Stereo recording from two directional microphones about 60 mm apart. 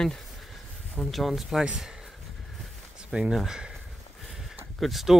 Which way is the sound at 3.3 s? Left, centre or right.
Centre.